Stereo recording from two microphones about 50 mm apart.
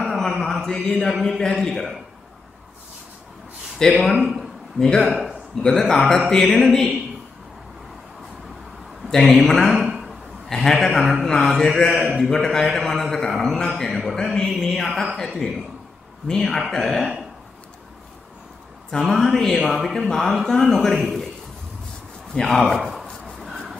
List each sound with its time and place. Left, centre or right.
0.0 s mantra: centre
1.4 s a man's voice: centre
3.8 s a man's voice: centre
4.3 s a sound: centre
5.0 s speech: centre
5.6 s a man's voice: centre
9.4 s speech: centre
9.8 s a sound: centre
10.5 s a man's voice: centre
18.9 s a man's voice: centre
22.3 s speech: centre